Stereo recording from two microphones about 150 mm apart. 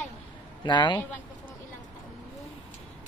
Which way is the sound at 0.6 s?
30° left (ahead or behind).